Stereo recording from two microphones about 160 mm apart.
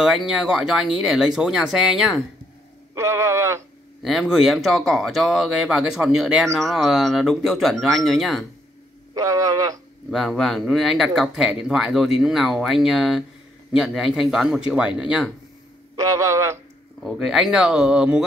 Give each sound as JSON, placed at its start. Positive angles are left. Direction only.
{"t": 0.0, "sound": "speech", "side_deg": -5}
{"t": 2.9, "sound": "speech", "side_deg": -15}
{"t": 4.0, "sound": "speech", "side_deg": 0}
{"t": 9.1, "sound": "speech", "side_deg": -20}
{"t": 10.1, "sound": "speech", "side_deg": 0}
{"t": 16.0, "sound": "speech", "side_deg": -20}
{"t": 17.0, "sound": "speech", "side_deg": 0}